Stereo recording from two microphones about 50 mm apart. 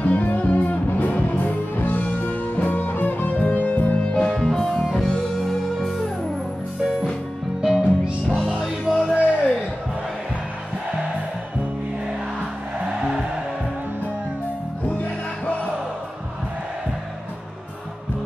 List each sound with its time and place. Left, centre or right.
0.0 s music: left
4.1 s music: centre
7.6 s music: centre
9.1 s music: right